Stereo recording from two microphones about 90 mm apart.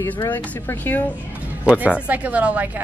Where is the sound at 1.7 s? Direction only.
10° right (ahead or behind).